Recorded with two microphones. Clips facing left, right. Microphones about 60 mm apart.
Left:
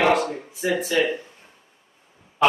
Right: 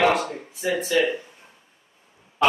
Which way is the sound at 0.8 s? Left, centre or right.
Centre.